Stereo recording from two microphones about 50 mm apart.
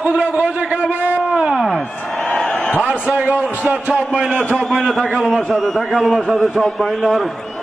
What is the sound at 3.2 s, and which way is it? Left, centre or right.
A man's voice, right.